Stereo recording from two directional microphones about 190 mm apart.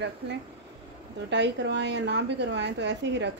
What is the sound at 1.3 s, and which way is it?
A woman's voice, 65° right (ahead or behind).